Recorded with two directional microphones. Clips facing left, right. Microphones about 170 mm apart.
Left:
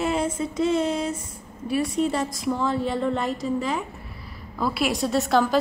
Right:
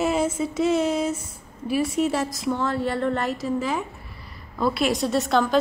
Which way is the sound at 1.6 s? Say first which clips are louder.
Right 1 dB; 5° right (ahead or behind).